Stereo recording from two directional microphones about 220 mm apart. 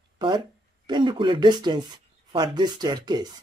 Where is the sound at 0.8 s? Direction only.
20° right (ahead or behind).